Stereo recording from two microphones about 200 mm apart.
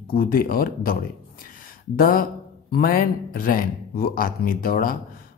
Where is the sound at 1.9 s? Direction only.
45° left (ahead or behind).